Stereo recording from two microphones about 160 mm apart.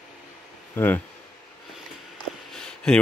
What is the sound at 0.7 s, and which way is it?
Speech, 15° left (ahead or behind).